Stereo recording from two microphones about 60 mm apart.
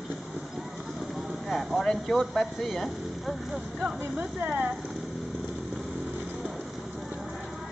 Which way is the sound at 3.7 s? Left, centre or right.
Centre.